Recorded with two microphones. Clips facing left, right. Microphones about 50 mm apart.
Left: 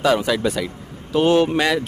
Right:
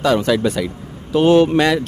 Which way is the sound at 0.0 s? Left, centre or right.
Centre.